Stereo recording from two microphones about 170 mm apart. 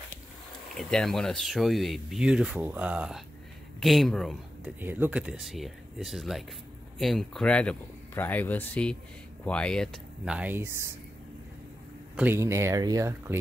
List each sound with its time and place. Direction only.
0.7 s speech: centre (ahead or behind)
4.7 s speech: 10° right (ahead or behind); by 9.8 s 5° left (ahead or behind)
10.2 s speech: 5° right (ahead or behind)
12.2 s speech: 15° right (ahead or behind)